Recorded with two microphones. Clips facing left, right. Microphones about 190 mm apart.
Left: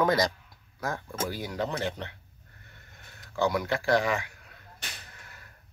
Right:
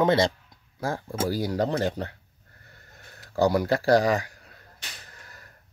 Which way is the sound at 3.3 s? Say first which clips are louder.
Right 5 dB; 35° right (ahead or behind).